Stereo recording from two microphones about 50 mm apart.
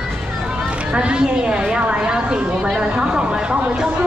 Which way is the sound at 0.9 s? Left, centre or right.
Centre.